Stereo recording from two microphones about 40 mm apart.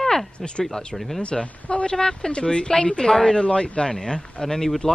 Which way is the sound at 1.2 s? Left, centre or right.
Left.